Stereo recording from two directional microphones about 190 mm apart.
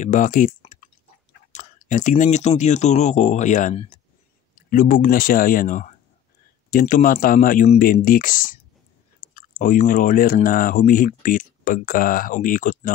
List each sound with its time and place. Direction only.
0.0 s speech: 40° left (ahead or behind)